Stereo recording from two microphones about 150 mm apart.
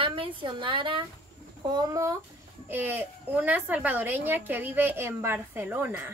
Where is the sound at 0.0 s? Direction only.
35° right (ahead or behind).